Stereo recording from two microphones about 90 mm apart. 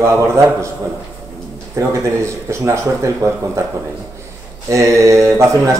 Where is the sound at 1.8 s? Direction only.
30° right (ahead or behind).